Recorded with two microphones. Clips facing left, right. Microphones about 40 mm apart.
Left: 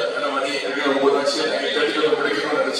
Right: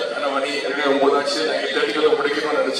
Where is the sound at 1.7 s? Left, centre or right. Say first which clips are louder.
Right 2 dB; centre.